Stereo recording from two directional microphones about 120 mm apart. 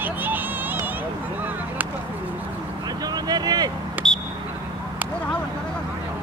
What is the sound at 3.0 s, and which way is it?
Vehicle, 35° right (ahead or behind).